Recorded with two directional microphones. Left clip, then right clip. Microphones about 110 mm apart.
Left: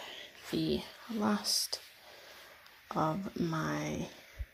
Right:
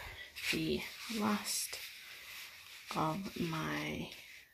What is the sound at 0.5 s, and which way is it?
Speech, 15° left (ahead or behind).